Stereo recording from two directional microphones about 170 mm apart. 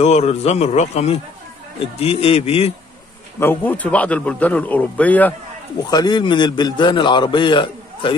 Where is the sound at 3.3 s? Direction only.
10° left (ahead or behind).